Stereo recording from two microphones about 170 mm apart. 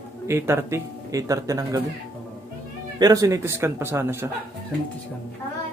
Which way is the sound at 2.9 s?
20° right (ahead or behind).